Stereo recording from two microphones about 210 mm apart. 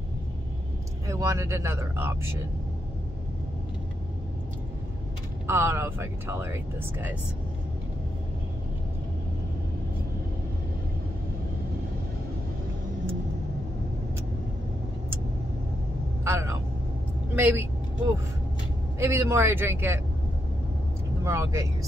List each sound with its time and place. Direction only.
1.0 s speech: 15° right (ahead or behind)
5.5 s speech: 10° right (ahead or behind)
16.3 s vehicle: 15° right (ahead or behind)
17.4 s speech: 10° right (ahead or behind)
18.9 s speech: 15° right (ahead or behind)
21.2 s speech: 15° right (ahead or behind)